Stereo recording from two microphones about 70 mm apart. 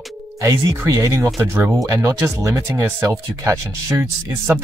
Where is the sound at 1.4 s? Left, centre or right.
Right.